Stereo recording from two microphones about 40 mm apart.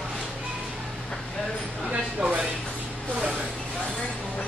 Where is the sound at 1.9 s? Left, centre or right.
Right.